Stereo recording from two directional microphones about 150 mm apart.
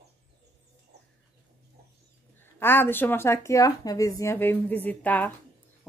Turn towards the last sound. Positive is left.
turn(degrees=10)  # may be behind; listen again after turning